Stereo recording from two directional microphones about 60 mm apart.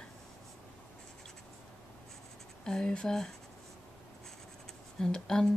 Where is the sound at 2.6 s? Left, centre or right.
Centre.